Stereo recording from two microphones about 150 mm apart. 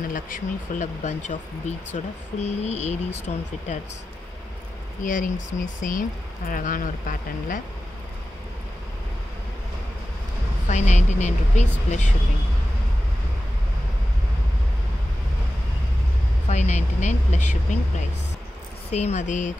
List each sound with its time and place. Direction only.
0.1 s speech: 60° left (ahead or behind)
5.0 s speech: 60° left (ahead or behind)
10.7 s speech: 50° left (ahead or behind)
16.4 s speech: 50° left (ahead or behind)